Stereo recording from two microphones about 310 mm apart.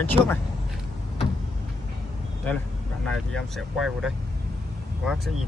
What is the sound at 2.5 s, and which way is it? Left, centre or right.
Speech, centre.